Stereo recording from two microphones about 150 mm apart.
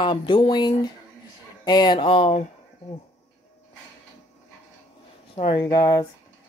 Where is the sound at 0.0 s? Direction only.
30° left (ahead or behind).